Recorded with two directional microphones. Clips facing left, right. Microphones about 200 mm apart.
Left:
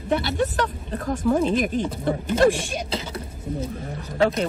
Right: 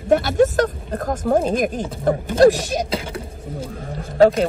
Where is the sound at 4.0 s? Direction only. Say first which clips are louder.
Right 8 dB; 45° right (ahead or behind).